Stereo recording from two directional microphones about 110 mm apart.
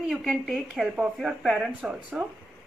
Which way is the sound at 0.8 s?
10° right (ahead or behind).